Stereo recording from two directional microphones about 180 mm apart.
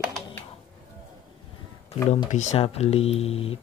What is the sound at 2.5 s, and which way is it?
Speech, 35° left (ahead or behind).